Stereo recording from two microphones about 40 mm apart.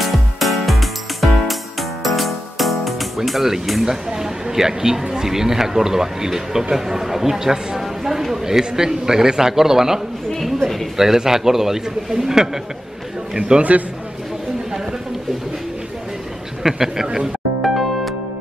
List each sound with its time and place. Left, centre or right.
0.0 s music: centre
5.2 s speech: centre
13.4 s a man's voice: right
16.6 s speech: centre
17.6 s music: centre